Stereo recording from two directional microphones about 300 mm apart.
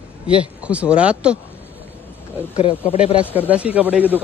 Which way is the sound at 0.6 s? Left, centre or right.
Centre.